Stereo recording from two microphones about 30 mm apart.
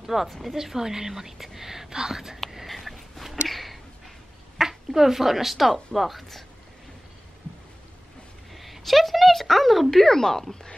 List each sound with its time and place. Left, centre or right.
0.0 s a woman's voice: centre
0.6 s a woman's voice: centre
1.9 s speech: right
2.5 s a sound: centre
4.6 s a woman's voice: centre
8.5 s speech: centre